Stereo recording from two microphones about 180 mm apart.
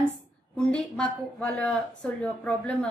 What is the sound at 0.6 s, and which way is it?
A woman's voice, 5° left (ahead or behind).